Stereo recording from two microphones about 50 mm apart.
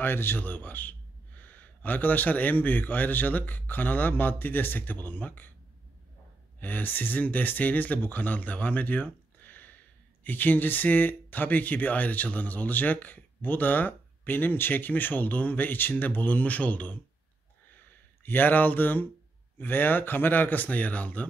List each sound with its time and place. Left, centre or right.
0.0 s speech: left
0.4 s speech: left
6.6 s speech: left
18.2 s speech: left